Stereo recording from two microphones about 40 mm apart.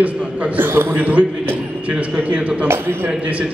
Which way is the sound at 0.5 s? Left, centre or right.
Right.